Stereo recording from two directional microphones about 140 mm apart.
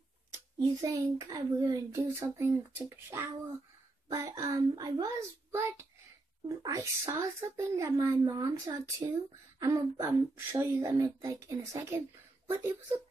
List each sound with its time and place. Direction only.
0.3 s a child's voice: 25° right (ahead or behind)
4.1 s speech: 25° right (ahead or behind)
5.5 s speech: 15° right (ahead or behind)
8.3 s speech: 25° right (ahead or behind)